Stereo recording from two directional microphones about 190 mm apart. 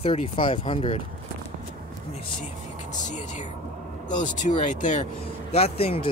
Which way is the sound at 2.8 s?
40° left (ahead or behind).